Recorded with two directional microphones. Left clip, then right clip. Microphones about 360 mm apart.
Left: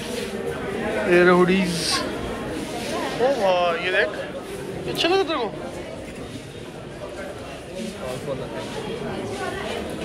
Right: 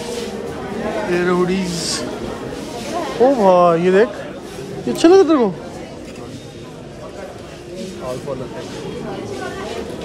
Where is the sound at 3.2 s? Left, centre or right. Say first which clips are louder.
Right 8 dB; centre.